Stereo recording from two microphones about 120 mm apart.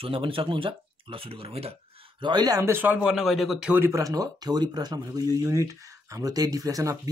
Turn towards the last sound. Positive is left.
turn(degrees=-30)  # may be behind; listen again after turning